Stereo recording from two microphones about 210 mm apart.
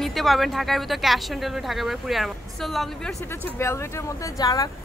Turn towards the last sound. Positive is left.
turn(degrees=15)  # may be behind; listen again after turning